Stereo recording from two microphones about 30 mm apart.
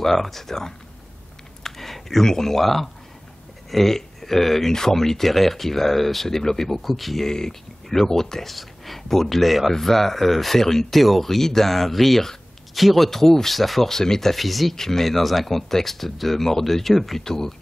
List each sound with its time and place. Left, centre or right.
0.0 s speech: centre
1.6 s a sound: centre
2.2 s speech: centre
7.2 s speech: centre
8.5 s speech: centre
14.3 s speech: centre
14.8 s speech: centre
15.0 s speech: centre
17.2 s speech: centre